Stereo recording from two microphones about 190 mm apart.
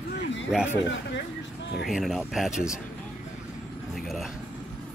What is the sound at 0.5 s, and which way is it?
Speech, 10° right (ahead or behind).